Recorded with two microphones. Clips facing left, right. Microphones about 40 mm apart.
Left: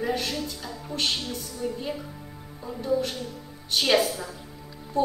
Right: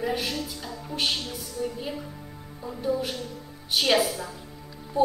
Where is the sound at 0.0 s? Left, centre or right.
Centre.